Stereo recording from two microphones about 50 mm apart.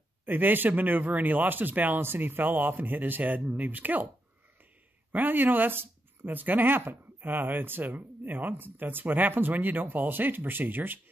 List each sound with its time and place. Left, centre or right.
0.2 s speech: right
5.1 s speech: right